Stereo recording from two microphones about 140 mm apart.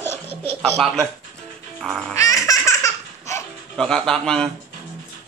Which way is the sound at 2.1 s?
25° left (ahead or behind).